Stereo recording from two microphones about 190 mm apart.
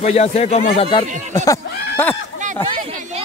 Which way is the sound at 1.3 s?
10° left (ahead or behind).